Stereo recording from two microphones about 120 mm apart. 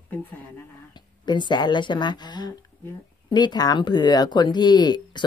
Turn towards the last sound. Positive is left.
turn(degrees=35)  # may be behind; listen again after turning